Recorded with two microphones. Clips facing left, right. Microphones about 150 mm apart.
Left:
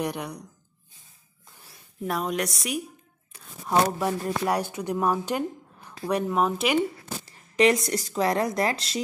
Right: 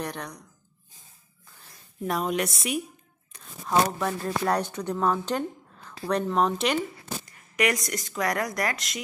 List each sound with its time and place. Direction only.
0.0 s speech: 10° left (ahead or behind)
1.6 s speech: centre (ahead or behind)
3.3 s speech: 10° left (ahead or behind)
7.2 s a woman's voice: 30° left (ahead or behind)